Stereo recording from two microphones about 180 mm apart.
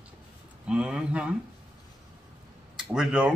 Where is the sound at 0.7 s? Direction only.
5° right (ahead or behind).